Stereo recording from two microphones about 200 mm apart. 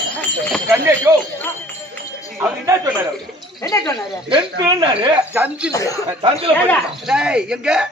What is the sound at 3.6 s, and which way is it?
Speech, 15° left (ahead or behind).